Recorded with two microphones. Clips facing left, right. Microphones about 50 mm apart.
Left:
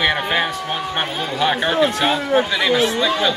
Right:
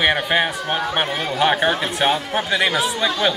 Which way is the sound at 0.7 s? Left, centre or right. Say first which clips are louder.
Right 2 dB; centre.